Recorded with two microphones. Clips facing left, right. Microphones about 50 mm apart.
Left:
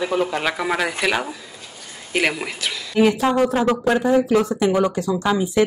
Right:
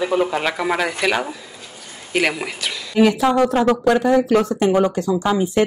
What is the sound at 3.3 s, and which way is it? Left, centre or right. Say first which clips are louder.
Speech: right 2 dB; right.